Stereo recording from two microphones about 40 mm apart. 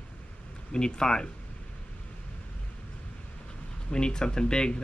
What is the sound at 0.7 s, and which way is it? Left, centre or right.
Speech, centre.